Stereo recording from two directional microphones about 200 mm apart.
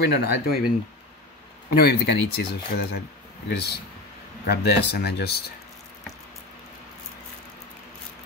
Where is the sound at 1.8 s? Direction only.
55° left (ahead or behind).